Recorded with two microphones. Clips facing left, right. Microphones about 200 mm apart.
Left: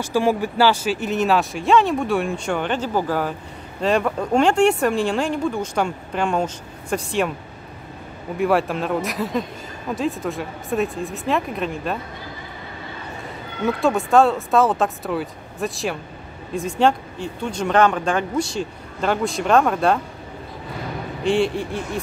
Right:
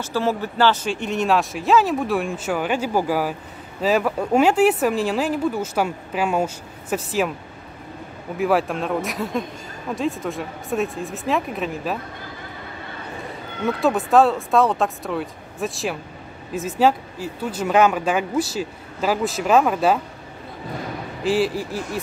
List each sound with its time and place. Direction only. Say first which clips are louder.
0.0 s speech: left 3 dB; 15° left (ahead or behind); by 7.3 s 5° right (ahead or behind)
8.4 s speech: left 1 dB; centre (ahead or behind)
13.7 s speech: even; centre (ahead or behind)
21.2 s speech: left 1 dB; 5° right (ahead or behind)